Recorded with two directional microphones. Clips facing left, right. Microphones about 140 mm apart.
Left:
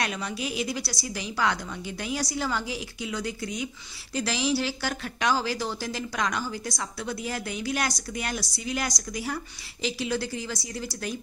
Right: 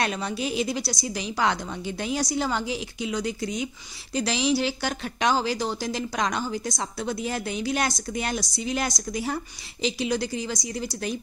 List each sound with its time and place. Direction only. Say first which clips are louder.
0.0 s speech: right 4 dB; 30° right (ahead or behind)